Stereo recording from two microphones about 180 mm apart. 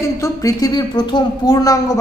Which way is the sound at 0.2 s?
20° left (ahead or behind).